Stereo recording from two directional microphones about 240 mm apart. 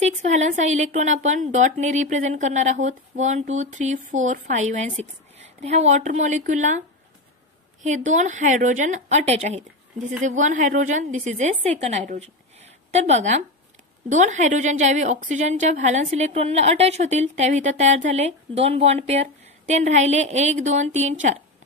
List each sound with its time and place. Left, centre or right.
0.0 s a woman's voice: right
7.8 s a woman's voice: right